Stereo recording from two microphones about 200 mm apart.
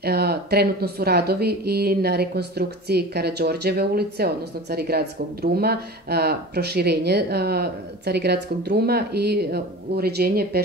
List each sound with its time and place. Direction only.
0.0 s speech: 50° right (ahead or behind)